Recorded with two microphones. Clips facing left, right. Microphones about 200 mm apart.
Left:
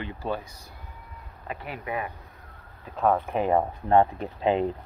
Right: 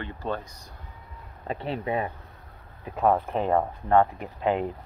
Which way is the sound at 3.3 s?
10° left (ahead or behind).